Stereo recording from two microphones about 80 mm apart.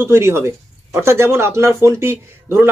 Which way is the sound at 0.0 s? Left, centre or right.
Right.